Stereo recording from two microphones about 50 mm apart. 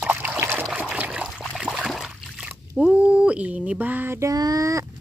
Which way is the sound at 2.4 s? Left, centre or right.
Right.